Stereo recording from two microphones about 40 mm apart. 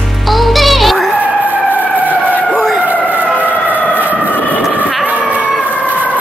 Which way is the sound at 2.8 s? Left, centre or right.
Right.